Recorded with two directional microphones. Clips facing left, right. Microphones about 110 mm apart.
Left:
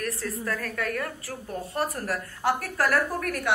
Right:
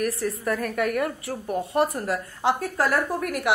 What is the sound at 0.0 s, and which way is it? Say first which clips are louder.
A woman's voice: right 5 dB; 20° right (ahead or behind).